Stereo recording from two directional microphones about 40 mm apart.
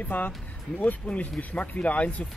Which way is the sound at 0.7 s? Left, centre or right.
Left.